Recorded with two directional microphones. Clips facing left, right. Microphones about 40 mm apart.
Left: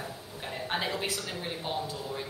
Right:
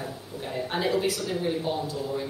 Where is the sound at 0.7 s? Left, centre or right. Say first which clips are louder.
Right 7 dB; left.